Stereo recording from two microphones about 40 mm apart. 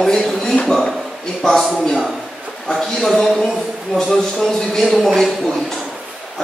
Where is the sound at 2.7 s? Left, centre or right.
Centre.